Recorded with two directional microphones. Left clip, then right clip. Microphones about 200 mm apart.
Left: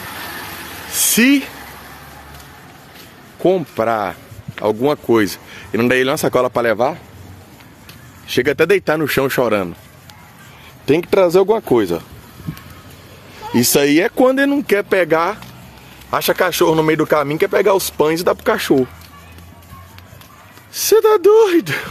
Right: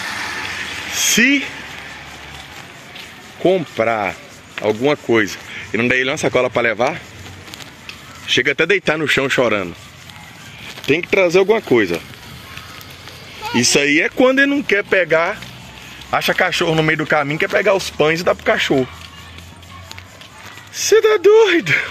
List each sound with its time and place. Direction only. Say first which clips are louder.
1.0 s speech: even; 15° left (ahead or behind)
3.4 s speech: even; 20° left (ahead or behind)
8.4 s speech: left 2 dB; 15° left (ahead or behind)
10.9 s speech: left 1 dB; 20° left (ahead or behind)
13.7 s speech: left 2 dB; 25° left (ahead or behind)
20.7 s speech: left 1 dB; 20° left (ahead or behind)